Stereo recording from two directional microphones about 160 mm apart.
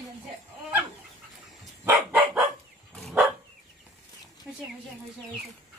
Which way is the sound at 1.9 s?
10° right (ahead or behind).